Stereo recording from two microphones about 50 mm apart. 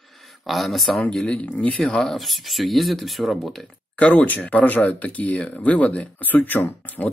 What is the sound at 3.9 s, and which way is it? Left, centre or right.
Speech, left.